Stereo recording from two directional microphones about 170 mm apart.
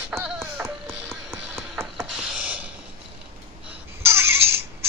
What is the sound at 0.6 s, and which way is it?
Music, 10° right (ahead or behind).